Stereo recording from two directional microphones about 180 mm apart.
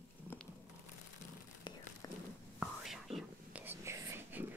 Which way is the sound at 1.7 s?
25° left (ahead or behind).